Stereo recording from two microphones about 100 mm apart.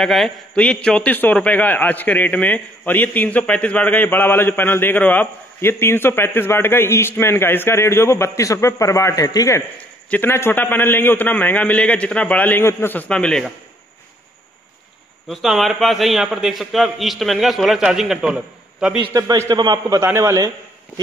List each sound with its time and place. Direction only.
0.0 s a man's voice: 5° left (ahead or behind); by 9.6 s 35° left (ahead or behind)
10.0 s a man's voice: 20° left (ahead or behind)
13.1 s a man's voice: 10° left (ahead or behind)
15.2 s a man's voice: centre (ahead or behind)
19.1 s a man's voice: 35° right (ahead or behind)